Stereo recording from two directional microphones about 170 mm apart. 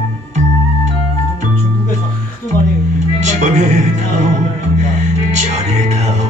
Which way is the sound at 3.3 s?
45° right (ahead or behind).